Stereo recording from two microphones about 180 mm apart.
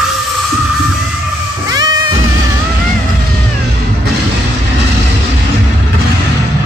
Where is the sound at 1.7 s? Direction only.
20° right (ahead or behind).